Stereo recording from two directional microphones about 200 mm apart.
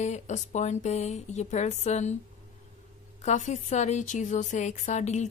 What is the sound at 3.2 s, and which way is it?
A woman's voice, 40° left (ahead or behind).